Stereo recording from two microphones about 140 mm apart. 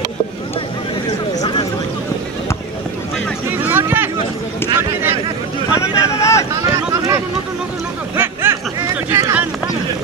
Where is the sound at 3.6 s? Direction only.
15° right (ahead or behind).